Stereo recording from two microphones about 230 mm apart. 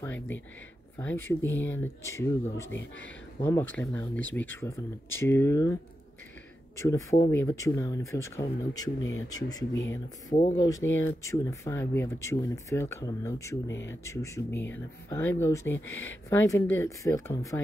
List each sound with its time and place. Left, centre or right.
0.0 s speech: centre
6.8 s speech: centre
10.3 s speech: left
10.6 s speech: centre